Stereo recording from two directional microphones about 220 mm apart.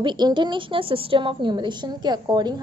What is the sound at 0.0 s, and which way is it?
A woman's voice, 20° right (ahead or behind).